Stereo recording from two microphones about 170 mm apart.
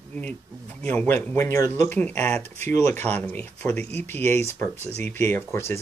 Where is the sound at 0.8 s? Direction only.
10° left (ahead or behind).